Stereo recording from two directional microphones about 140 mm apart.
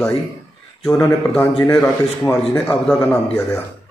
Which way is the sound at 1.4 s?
5° left (ahead or behind).